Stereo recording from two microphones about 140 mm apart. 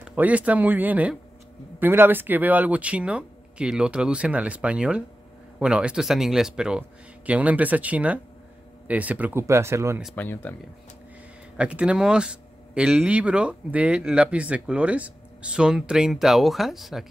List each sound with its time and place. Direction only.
0.1 s speech: 10° right (ahead or behind)
10.1 s speech: 15° left (ahead or behind)
11.5 s speech: 10° right (ahead or behind)